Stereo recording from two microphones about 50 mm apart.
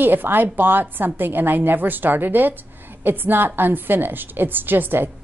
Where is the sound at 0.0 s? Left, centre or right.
Right.